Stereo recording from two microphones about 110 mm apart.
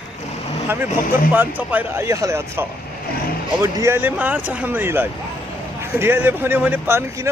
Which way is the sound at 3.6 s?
25° right (ahead or behind).